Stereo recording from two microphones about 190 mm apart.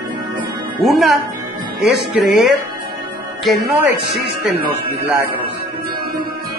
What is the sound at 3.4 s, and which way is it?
Speech, 10° right (ahead or behind).